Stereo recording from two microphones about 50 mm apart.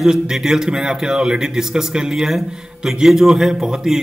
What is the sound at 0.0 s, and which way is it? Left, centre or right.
Mantra, centre.